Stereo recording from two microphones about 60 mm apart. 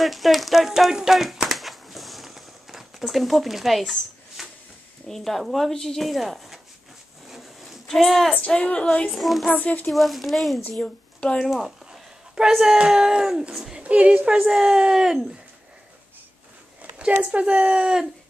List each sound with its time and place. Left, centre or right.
0.0 s a sound: centre
5.0 s speech: centre
7.2 s a sound: centre
7.8 s speech: centre
8.5 s speech: centre
9.1 s speech: centre
9.5 s speech: left
9.8 s speech: centre
10.8 s speech: centre
11.4 s speech: centre
13.7 s speech: right
17.0 s speech: centre